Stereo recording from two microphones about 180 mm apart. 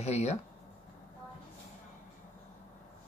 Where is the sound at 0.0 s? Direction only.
40° left (ahead or behind).